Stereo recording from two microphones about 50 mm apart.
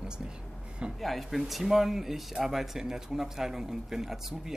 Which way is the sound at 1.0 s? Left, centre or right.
Centre.